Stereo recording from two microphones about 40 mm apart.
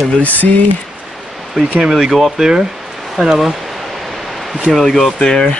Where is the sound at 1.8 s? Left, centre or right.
Centre.